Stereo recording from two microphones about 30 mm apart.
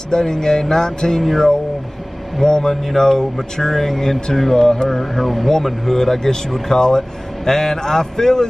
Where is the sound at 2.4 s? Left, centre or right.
Centre.